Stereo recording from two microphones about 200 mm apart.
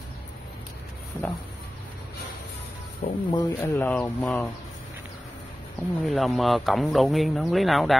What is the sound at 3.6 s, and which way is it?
Speech, 10° left (ahead or behind).